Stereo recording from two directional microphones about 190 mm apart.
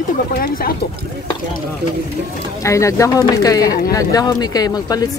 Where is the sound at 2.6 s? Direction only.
15° left (ahead or behind).